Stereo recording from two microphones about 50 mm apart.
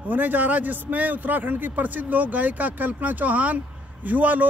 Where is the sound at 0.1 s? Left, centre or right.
Right.